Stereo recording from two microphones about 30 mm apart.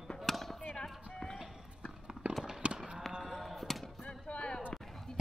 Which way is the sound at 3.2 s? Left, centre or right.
Centre.